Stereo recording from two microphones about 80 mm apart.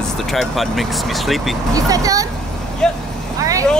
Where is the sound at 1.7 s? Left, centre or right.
Right.